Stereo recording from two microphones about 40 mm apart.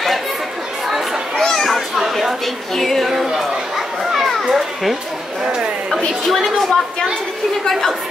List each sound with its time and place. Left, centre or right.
0.8 s chatter: centre
1.4 s children playing: centre
2.0 s a sound: centre
2.7 s speech: centre
3.3 s a sound: centre
4.5 s children playing: centre
5.4 s speech: right
6.2 s a woman's voice: centre